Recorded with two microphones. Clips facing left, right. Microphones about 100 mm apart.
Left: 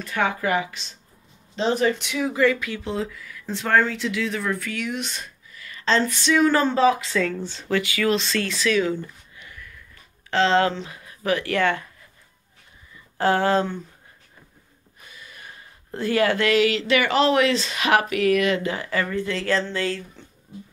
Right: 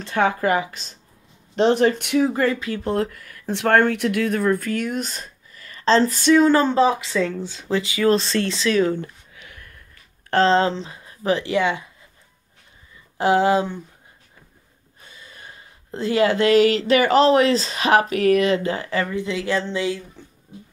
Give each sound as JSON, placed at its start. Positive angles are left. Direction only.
{"t": 0.0, "sound": "speech", "side_deg": -40}
{"t": 1.5, "sound": "speech", "side_deg": -55}
{"t": 2.5, "sound": "speech", "side_deg": -30}
{"t": 2.8, "sound": "speech", "side_deg": -55}
{"t": 6.4, "sound": "speech", "side_deg": -25}
{"t": 8.1, "sound": "speech", "side_deg": -35}
{"t": 8.9, "sound": "a sound", "side_deg": -70}
{"t": 10.3, "sound": "speech", "side_deg": -35}
{"t": 11.5, "sound": "speech", "side_deg": -15}
{"t": 13.2, "sound": "speech", "side_deg": -15}
{"t": 15.0, "sound": "speech", "side_deg": -30}
{"t": 19.0, "sound": "speech", "side_deg": -15}